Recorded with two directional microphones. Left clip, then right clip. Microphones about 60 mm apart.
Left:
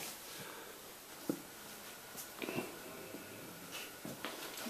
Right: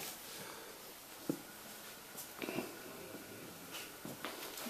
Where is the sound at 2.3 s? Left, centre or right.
Centre.